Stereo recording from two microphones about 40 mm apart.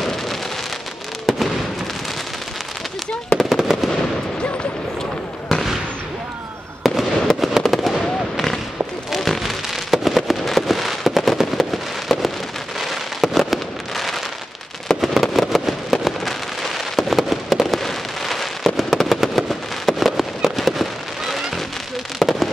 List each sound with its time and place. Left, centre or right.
0.0 s rain: centre
1.3 s fireworks: centre
3.3 s a sound: centre
5.5 s fireworks: centre
6.8 s fireworks: centre
9.1 s fireworks: centre
14.9 s a sound: centre
15.2 s fireworks: centre
18.9 s a sound: centre
20.2 s fireworks: centre
22.2 s fireworks: centre